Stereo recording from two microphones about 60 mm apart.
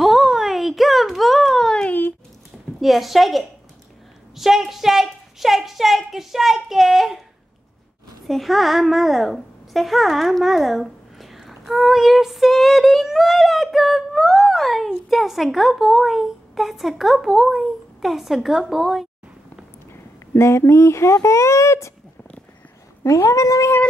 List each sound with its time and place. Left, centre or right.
0.0 s a sound: centre
1.9 s a sound: left
2.8 s a woman's voice: centre
8.3 s a woman's voice: centre
19.9 s speech: left
23.0 s speech: left